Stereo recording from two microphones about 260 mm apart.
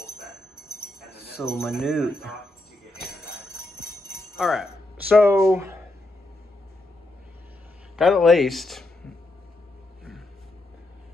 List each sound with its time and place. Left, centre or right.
0.6 s jingle bell: left
1.4 s jingle bell: centre
3.8 s jingle bell: left
4.2 s speech: centre
7.9 s jingle bell: centre